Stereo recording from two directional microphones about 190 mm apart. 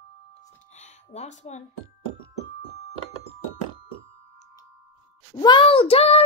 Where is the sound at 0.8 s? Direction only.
40° left (ahead or behind).